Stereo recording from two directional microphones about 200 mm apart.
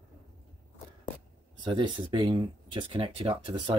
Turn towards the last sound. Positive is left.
turn(degrees=-25)  # may be behind; listen again after turning